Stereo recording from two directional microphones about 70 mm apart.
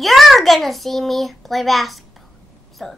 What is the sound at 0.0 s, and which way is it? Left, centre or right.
A child's voice, centre.